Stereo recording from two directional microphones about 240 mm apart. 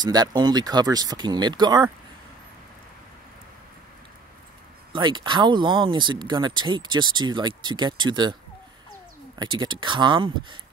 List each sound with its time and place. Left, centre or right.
0.0 s speech: centre
4.9 s speech: centre
9.4 s speech: centre